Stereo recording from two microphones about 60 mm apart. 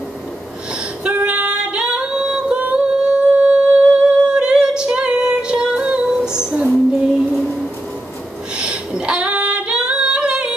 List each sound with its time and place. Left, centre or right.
1.0 s female singing: centre
7.2 s music: centre
8.5 s female singing: centre